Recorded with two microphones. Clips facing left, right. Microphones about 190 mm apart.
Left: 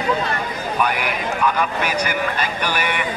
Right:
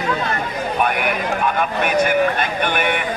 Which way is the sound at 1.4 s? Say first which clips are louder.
Left 1 dB; 55° right (ahead or behind).